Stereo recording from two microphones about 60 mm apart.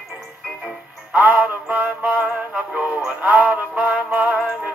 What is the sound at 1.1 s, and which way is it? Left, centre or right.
Synthetic singing, right.